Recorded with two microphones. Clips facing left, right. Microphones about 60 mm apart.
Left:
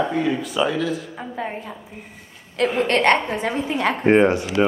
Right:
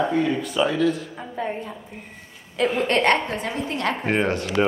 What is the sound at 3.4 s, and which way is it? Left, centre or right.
Speech, left.